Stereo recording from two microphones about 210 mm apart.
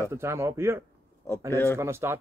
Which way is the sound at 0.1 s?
10° right (ahead or behind).